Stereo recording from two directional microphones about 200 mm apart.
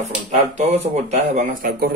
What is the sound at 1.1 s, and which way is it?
Speech, 35° right (ahead or behind).